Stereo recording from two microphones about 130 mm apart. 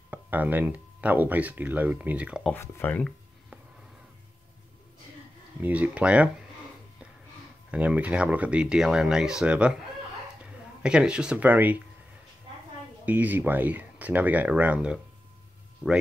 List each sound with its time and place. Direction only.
0.1 s speech: 15° right (ahead or behind)
2.5 s speech: 15° left (ahead or behind)
5.6 s speech: 10° right (ahead or behind)
7.7 s speech: 10° right (ahead or behind)
13.0 s speech: 10° right (ahead or behind)